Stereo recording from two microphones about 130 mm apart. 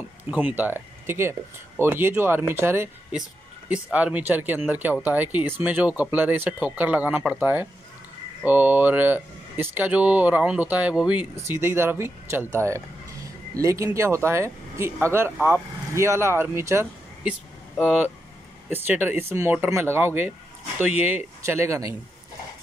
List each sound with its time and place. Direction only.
0.3 s speech: 10° right (ahead or behind)
17.8 s speech: 10° right (ahead or behind)